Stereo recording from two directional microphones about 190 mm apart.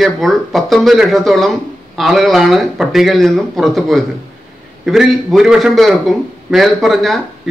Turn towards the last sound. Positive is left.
turn(degrees=0)  # may be behind; listen again after turning